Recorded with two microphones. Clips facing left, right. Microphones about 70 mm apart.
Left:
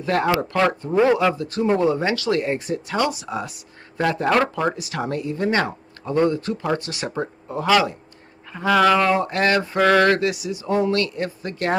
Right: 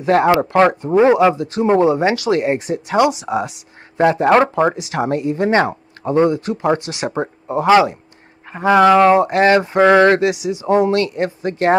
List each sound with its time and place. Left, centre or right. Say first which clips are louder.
0.0 s speech: right 7 dB; right